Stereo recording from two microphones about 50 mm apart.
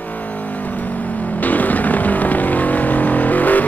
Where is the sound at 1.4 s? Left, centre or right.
Left.